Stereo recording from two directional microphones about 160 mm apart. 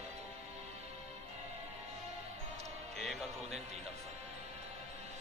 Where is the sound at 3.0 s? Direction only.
Centre (ahead or behind).